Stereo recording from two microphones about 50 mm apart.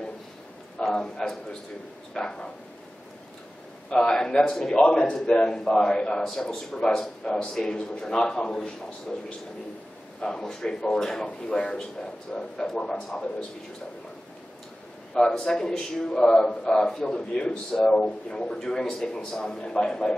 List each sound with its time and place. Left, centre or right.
0.8 s speech: centre
3.9 s speech: centre
10.2 s speech: centre
15.2 s speech: centre